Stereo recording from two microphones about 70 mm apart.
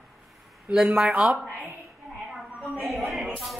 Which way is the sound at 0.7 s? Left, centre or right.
Centre.